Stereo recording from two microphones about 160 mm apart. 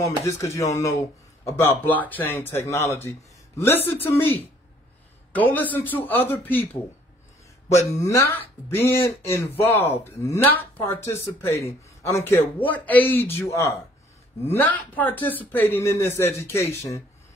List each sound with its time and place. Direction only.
0.0 s speech: 20° left (ahead or behind)
8.0 s speech: 15° left (ahead or behind)